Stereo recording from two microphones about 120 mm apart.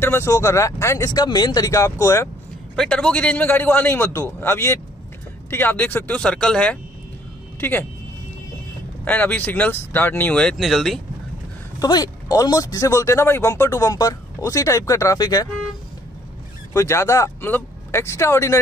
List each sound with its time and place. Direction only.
0.0 s speech: 20° left (ahead or behind)
2.7 s a man's voice: 5° left (ahead or behind)
9.0 s a man's voice: 15° left (ahead or behind)
11.8 s speech: 30° left (ahead or behind)
16.7 s speech: 25° left (ahead or behind)